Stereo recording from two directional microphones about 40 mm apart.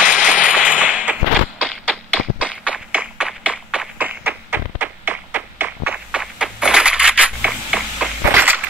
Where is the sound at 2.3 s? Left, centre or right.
Right.